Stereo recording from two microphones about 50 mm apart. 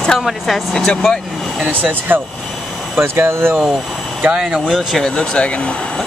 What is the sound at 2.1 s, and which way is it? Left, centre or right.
Speech, right.